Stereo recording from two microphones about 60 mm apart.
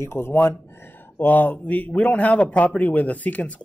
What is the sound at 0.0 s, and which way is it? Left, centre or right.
Speech, left.